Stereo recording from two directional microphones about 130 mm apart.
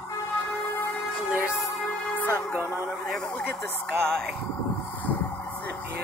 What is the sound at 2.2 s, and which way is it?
Music, 15° left (ahead or behind).